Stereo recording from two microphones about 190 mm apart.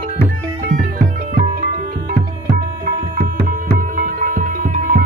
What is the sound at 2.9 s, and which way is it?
Music, 45° right (ahead or behind).